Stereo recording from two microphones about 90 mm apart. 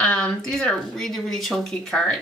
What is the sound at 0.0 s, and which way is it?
Speech, 10° left (ahead or behind).